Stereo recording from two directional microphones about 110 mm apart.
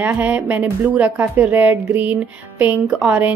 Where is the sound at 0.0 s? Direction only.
15° right (ahead or behind).